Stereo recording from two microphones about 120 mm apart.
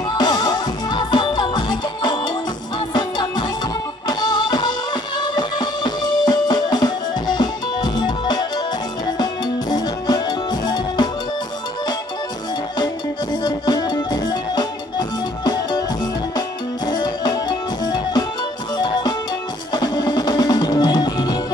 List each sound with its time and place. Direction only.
0.1 s music: 35° left (ahead or behind)
13.4 s music: 35° left (ahead or behind)